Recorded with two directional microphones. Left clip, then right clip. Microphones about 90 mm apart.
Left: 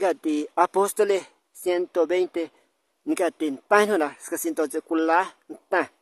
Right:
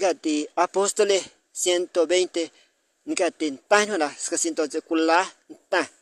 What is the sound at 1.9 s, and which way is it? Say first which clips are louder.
Speech: right 1 dB; 30° left (ahead or behind).